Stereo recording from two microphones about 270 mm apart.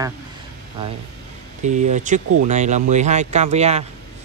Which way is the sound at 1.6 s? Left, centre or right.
Right.